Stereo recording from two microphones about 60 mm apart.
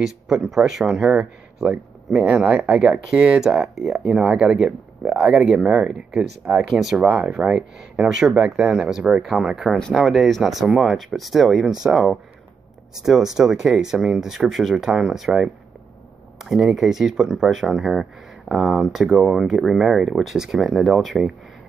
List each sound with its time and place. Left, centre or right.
0.0 s speech: centre
2.5 s speech: centre
6.7 s speech: centre
7.2 s speech: centre
8.0 s speech: centre
8.5 s speech: centre
13.0 s speech: centre